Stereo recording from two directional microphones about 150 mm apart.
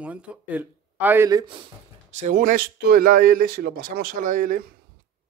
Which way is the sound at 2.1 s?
50° right (ahead or behind).